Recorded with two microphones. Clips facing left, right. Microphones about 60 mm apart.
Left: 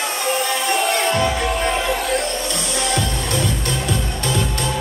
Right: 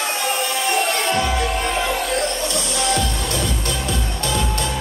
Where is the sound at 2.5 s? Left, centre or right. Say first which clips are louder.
Right 1 dB; left.